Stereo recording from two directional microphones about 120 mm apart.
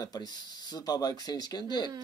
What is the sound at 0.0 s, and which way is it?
Speech, 35° left (ahead or behind).